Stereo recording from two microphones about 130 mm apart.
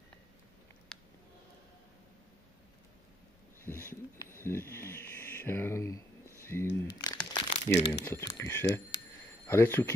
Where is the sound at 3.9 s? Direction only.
20° left (ahead or behind).